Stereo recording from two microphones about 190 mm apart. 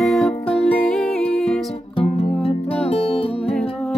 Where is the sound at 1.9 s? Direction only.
30° left (ahead or behind).